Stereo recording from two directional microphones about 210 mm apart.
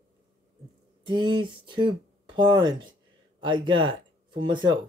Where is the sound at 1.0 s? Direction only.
20° right (ahead or behind).